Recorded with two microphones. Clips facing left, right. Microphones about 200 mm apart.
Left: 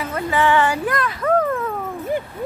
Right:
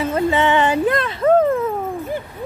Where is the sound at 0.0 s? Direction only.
25° right (ahead or behind).